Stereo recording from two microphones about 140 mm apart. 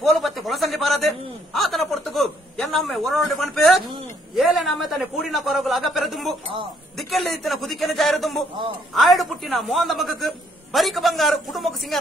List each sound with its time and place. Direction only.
0.0 s a man's voice: centre (ahead or behind)